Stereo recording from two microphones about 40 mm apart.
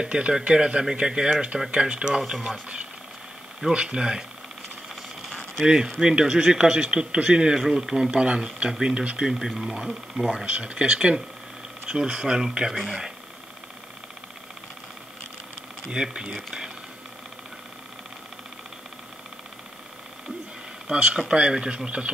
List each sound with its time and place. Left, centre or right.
0.1 s speech: right
3.7 s speech: right
5.9 s speech: centre
7.5 s speech: centre
8.1 s speech: right; by 10.4 s centre
10.4 s speech: right
12.7 s speech: centre
15.9 s speech: centre
20.8 s speech: right